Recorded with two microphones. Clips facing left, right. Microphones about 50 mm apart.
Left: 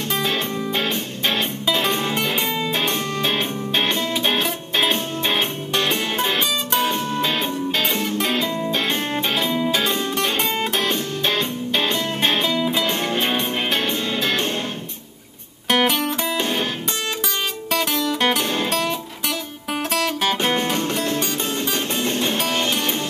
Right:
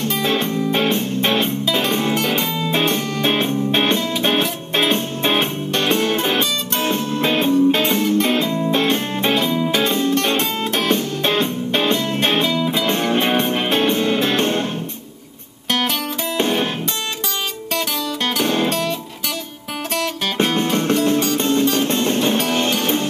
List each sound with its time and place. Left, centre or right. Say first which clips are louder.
0.2 s music: right 4 dB; right
2.1 s music: right 2 dB; centre
2.7 s music: right 3 dB; right
10.3 s music: right 2 dB; centre
10.9 s music: right 4 dB; right
12.4 s music: right 1 dB; centre
12.8 s music: right 4 dB; right
16.3 s music: right 7 dB; right
17.7 s music: left 2 dB; centre
18.4 s music: right 4 dB; right
18.7 s music: right 1 dB; centre
21.4 s music: right 7 dB; right